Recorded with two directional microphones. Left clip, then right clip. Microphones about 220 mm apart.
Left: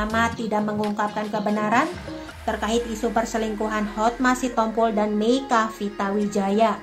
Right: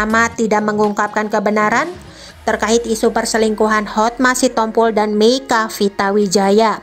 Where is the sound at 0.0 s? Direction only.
50° right (ahead or behind).